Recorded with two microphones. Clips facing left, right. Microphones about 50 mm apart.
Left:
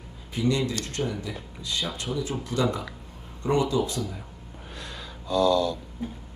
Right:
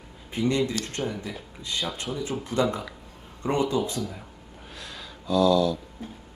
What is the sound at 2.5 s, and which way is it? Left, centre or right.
Speech, centre.